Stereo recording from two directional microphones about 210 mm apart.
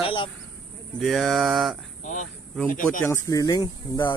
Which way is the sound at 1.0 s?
Centre (ahead or behind).